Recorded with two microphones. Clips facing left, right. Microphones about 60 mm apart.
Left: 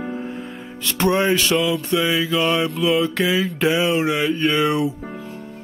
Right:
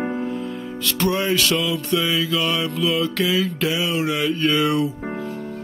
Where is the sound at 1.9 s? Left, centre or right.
Left.